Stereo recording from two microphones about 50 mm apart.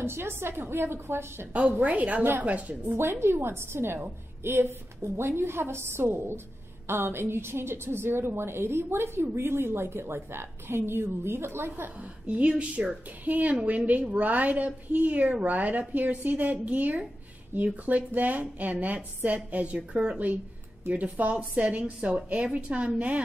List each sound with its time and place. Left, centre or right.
0.0 s a woman's voice: right
1.5 s a woman's voice: right
3.0 s a woman's voice: right
11.8 s a woman's voice: right